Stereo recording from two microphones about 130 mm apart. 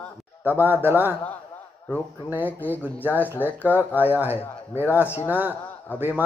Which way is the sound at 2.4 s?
15° left (ahead or behind).